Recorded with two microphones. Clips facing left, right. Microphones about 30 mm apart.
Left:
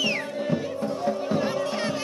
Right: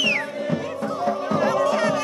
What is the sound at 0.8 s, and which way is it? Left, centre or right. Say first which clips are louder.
Music: right 3 dB; right.